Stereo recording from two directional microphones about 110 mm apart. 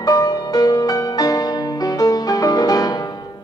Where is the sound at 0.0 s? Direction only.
35° left (ahead or behind).